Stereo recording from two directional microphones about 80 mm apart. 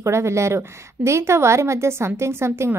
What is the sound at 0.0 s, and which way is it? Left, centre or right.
A woman's voice, right.